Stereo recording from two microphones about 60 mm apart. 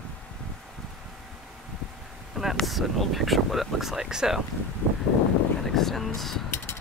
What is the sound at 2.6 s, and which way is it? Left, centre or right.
Speech, centre.